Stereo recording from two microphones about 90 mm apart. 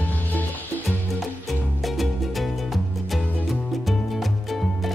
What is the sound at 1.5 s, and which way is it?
Music, centre (ahead or behind).